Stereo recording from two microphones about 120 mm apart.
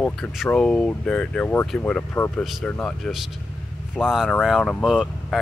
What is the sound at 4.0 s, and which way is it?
Speech, centre (ahead or behind).